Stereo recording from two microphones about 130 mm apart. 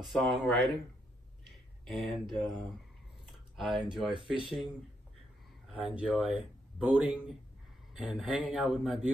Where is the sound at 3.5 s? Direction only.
Centre (ahead or behind).